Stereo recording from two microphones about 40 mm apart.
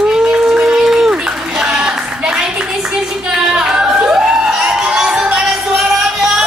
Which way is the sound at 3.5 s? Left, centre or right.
Right.